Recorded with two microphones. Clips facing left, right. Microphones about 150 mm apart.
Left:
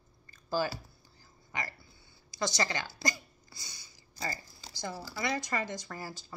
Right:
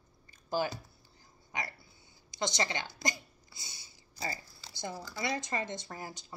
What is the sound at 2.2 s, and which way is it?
Speech, 20° right (ahead or behind).